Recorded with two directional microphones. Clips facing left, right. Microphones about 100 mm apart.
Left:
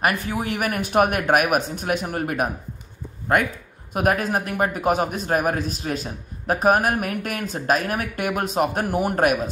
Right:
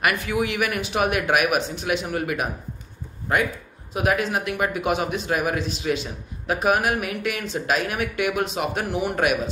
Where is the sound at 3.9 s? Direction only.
45° left (ahead or behind).